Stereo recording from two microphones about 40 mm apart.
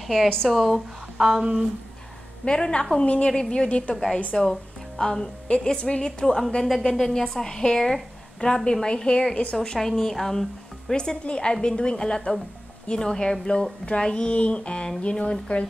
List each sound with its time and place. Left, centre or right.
0.0 s speech: centre
1.1 s speech: right
2.4 s speech: left
3.6 s speech: left
3.9 s a woman's voice: centre; by 9.6 s left
9.8 s a woman's voice: centre; by 15.3 s left